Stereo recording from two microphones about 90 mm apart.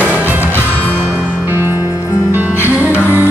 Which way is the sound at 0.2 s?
20° right (ahead or behind).